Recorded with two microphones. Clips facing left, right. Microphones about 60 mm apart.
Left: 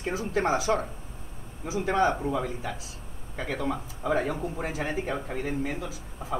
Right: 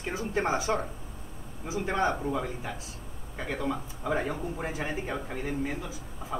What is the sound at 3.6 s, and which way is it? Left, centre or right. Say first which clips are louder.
Speech: left 1 dB; left.